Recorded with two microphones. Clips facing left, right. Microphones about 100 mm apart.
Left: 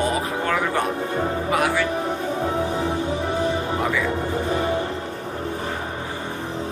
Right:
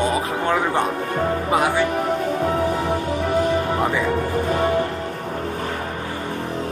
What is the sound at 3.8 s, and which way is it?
Music, 30° right (ahead or behind).